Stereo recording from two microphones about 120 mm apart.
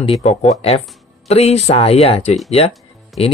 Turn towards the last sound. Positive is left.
turn(degrees=55)  # may be behind; listen again after turning